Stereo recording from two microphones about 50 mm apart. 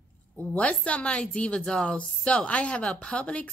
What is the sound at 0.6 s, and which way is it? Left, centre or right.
A woman's voice, left.